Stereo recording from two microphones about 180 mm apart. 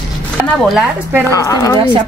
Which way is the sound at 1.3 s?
15° left (ahead or behind).